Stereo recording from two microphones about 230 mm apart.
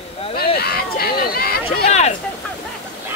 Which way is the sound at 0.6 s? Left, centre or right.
Left.